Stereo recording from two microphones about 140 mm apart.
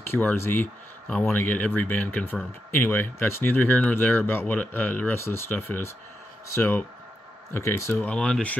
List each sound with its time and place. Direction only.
0.0 s speech: 15° left (ahead or behind)
8.1 s speech: 10° left (ahead or behind)